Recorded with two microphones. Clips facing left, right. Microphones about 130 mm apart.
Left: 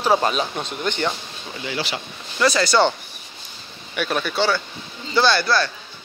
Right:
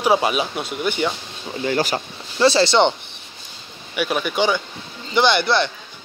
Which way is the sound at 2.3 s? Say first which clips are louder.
Right 3 dB; 30° right (ahead or behind).